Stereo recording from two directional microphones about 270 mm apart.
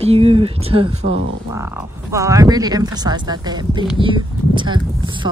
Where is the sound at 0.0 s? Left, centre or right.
Right.